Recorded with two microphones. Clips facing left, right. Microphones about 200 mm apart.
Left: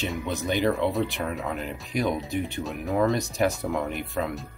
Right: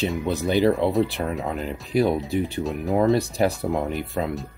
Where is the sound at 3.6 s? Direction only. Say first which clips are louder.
Right 3 dB; 30° right (ahead or behind).